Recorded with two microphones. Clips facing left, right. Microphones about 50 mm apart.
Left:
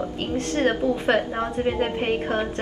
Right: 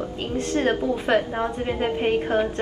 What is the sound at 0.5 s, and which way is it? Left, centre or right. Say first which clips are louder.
Speech: left 1 dB; centre.